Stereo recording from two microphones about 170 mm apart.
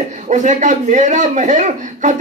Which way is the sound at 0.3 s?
45° right (ahead or behind).